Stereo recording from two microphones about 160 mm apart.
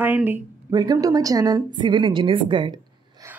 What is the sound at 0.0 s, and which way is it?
Speech, 10° right (ahead or behind).